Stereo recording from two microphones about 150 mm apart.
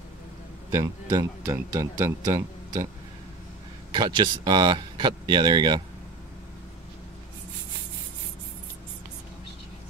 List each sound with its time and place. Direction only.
0.7 s speech: 25° right (ahead or behind)
3.9 s speech: 30° right (ahead or behind)